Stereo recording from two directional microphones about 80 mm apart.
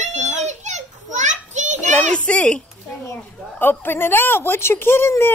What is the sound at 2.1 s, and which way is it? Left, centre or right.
Speech, centre.